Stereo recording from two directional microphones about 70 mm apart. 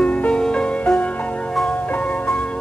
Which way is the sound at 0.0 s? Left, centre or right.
Centre.